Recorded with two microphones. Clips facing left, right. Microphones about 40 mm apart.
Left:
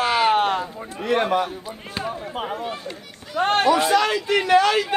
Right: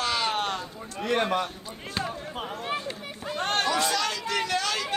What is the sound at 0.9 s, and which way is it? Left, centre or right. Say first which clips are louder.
Speech: left 5 dB; centre.